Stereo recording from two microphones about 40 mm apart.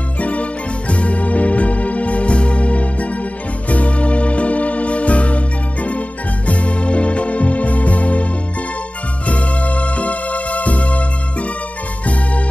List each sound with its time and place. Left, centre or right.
0.2 s organ: left
3.6 s music: left